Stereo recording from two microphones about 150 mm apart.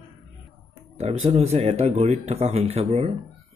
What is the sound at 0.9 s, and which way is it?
Speech, 45° right (ahead or behind).